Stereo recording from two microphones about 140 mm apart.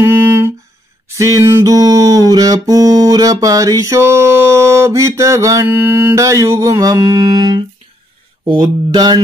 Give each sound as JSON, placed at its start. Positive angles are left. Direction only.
{"t": 1.0, "sound": "music", "side_deg": -20}
{"t": 8.5, "sound": "mantra", "side_deg": -30}